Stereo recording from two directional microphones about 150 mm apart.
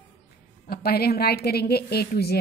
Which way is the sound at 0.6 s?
90° left.